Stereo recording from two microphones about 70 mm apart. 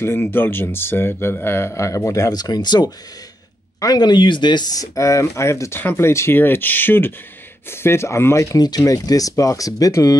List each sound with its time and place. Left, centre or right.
0.0 s speech: left
3.8 s speech: left
4.9 s speech: left
8.5 s speech: left